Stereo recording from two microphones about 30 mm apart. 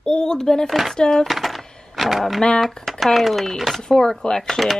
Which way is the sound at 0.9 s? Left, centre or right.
Left.